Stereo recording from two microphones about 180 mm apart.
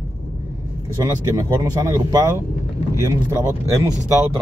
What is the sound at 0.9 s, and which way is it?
Speech, 20° right (ahead or behind).